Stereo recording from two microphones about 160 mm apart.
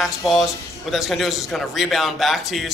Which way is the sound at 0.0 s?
Centre (ahead or behind).